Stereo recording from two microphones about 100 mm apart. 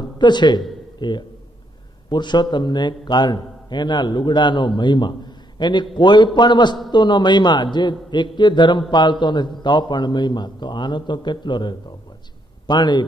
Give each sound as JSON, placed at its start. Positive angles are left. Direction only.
{"t": 0.2, "sound": "a man's voice", "side_deg": 50}